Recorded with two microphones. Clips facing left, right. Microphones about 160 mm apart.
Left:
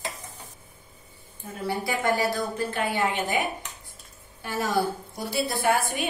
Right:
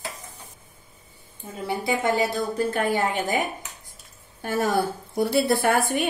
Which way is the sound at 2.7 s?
45° right (ahead or behind).